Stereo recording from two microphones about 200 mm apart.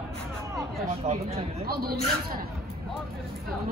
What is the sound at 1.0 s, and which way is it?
Speech, 35° right (ahead or behind).